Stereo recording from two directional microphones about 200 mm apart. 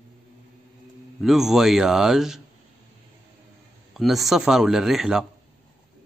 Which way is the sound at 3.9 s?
Centre (ahead or behind).